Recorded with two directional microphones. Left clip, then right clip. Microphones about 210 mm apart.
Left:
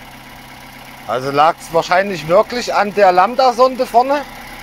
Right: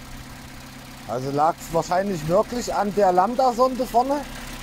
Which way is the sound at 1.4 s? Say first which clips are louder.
Left 8 dB; 5° right (ahead or behind).